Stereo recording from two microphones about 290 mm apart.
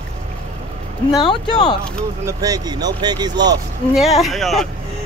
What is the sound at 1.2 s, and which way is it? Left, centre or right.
Speech, centre.